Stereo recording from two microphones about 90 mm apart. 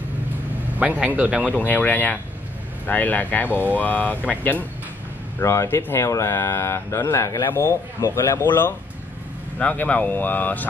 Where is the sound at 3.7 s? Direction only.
20° left (ahead or behind).